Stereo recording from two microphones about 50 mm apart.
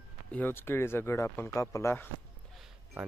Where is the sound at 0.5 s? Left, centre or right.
Left.